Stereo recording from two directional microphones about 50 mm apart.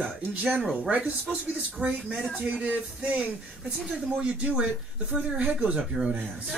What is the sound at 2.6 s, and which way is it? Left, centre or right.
Music, right.